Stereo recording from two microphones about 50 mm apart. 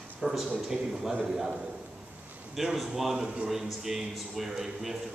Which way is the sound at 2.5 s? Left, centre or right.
Centre.